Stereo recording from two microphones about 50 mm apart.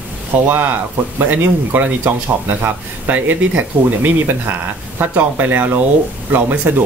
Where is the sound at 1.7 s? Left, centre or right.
Right.